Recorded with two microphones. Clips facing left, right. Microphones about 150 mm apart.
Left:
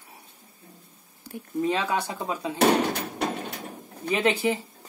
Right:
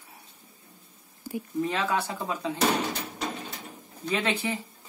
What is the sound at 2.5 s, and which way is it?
Door, 60° left (ahead or behind).